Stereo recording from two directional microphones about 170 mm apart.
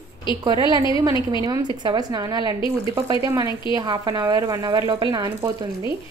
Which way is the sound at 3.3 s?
20° right (ahead or behind).